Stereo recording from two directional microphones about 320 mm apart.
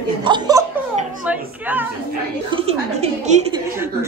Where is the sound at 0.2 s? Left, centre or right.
Centre.